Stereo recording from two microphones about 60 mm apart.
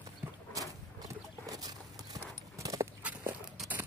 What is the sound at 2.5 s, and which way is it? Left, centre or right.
Horse, right.